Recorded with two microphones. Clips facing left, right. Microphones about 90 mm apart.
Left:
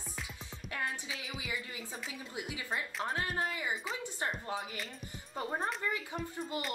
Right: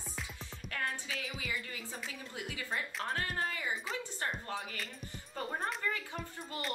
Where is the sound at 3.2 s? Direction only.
15° left (ahead or behind).